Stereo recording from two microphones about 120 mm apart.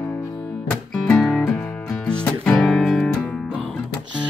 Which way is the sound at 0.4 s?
5° left (ahead or behind).